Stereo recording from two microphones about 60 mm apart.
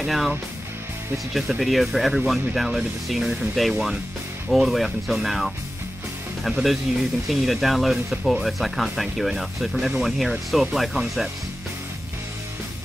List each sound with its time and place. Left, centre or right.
0.0 s speech: centre